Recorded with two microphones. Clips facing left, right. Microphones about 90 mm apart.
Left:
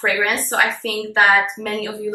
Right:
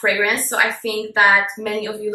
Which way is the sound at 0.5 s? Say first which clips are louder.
Even; 15° right (ahead or behind).